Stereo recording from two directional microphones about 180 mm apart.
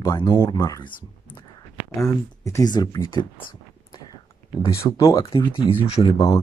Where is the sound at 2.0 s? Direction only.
15° left (ahead or behind).